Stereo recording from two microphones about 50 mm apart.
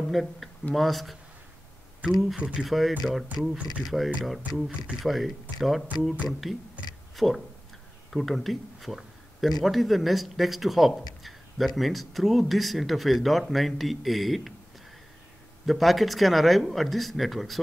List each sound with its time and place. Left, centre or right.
0.1 s speech: centre
2.3 s speech: centre
2.6 s speech: centre
15.6 s speech: centre